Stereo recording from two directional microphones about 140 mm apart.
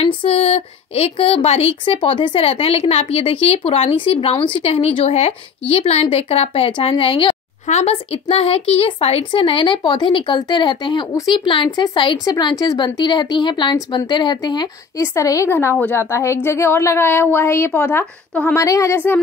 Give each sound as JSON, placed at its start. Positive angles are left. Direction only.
{"t": 0.2, "sound": "speech", "side_deg": 45}
{"t": 15.1, "sound": "a woman's voice", "side_deg": 20}